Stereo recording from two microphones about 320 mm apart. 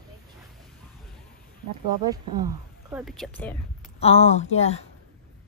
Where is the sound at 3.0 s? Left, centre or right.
Centre.